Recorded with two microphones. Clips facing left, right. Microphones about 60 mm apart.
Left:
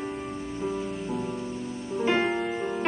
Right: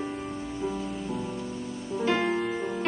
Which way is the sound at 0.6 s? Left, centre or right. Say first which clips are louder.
Left 2 dB; left.